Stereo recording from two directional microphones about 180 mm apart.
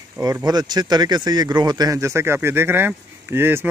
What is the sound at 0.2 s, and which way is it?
Speech, 15° right (ahead or behind).